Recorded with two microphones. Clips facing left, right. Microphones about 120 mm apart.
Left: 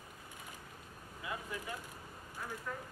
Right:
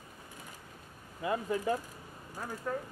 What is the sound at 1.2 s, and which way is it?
Speech, 40° right (ahead or behind).